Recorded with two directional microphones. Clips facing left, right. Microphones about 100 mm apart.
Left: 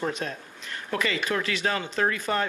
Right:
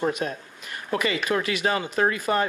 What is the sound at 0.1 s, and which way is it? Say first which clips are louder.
Speech: right 4 dB; 10° right (ahead or behind).